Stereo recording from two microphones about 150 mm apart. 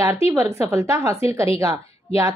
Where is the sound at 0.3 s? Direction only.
20° right (ahead or behind).